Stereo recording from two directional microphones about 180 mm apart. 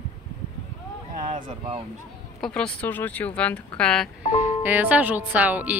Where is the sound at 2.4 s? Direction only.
5° left (ahead or behind).